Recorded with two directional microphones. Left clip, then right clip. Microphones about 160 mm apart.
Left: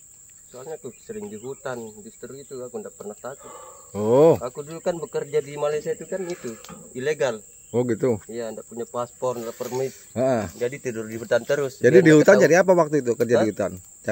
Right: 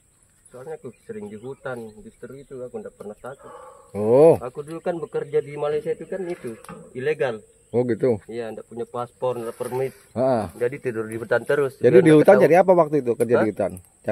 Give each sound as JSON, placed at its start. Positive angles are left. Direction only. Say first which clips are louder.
{"t": 0.6, "sound": "cricket", "louder": "even", "side_deg": -20}
{"t": 3.9, "sound": "speech", "louder": "right 2 dB", "side_deg": 0}
{"t": 4.4, "sound": "speech", "louder": "even", "side_deg": -35}
{"t": 7.7, "sound": "speech", "louder": "right 2 dB", "side_deg": 0}
{"t": 8.3, "sound": "speech", "louder": "even", "side_deg": -35}
{"t": 9.4, "sound": "speech", "louder": "right 1 dB", "side_deg": -50}
{"t": 10.1, "sound": "speech", "louder": "right 1 dB", "side_deg": -5}
{"t": 10.6, "sound": "speech", "louder": "right 3 dB", "side_deg": -35}
{"t": 11.8, "sound": "speech", "louder": "even", "side_deg": 0}